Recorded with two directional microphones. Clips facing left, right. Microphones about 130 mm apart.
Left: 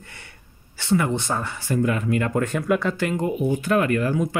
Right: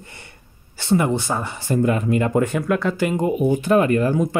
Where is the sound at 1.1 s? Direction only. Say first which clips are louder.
Right 3 dB; 5° right (ahead or behind).